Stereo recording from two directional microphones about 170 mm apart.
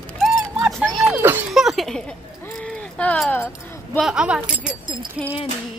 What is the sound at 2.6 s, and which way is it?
Keys jangling, 5° left (ahead or behind).